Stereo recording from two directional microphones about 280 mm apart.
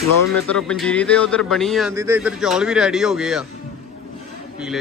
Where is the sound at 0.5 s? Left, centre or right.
Centre.